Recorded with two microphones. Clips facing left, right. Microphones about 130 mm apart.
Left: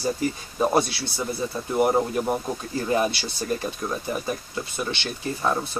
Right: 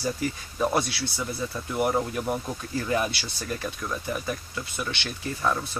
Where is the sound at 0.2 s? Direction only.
30° left (ahead or behind).